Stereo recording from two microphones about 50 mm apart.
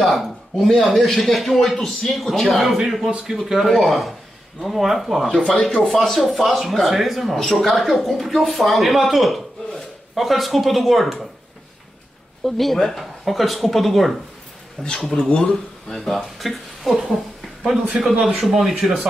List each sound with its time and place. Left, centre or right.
0.0 s speech: centre
12.4 s speech: centre
14.8 s speech: centre
15.5 s speech: centre
18.2 s speech: centre